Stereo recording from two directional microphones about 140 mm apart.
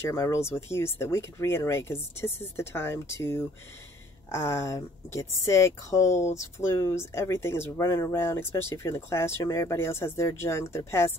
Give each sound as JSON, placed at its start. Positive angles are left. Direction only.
{"t": 0.1, "sound": "speech", "side_deg": 20}